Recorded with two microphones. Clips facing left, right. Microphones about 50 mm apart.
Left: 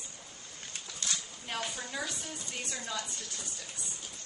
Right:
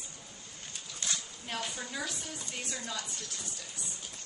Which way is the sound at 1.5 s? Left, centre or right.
Centre.